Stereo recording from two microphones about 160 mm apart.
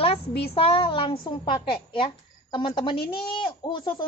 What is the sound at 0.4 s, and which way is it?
A woman's voice, 35° left (ahead or behind).